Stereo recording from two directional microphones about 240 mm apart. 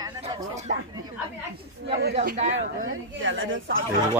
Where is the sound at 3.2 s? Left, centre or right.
Right.